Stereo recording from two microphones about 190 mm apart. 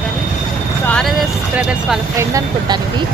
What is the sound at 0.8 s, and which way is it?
Speech, 5° left (ahead or behind).